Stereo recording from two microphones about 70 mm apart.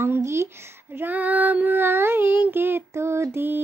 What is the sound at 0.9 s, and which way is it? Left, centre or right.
A woman's voice, right.